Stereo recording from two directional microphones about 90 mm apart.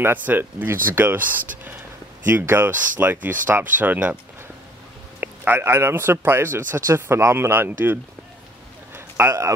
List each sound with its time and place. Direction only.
0.0 s a man's voice: 20° right (ahead or behind)
5.2 s a man's voice: 20° right (ahead or behind)
8.9 s a sound: 25° right (ahead or behind)